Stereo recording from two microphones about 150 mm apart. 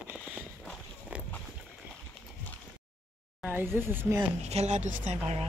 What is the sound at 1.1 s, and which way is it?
Walk, 10° right (ahead or behind).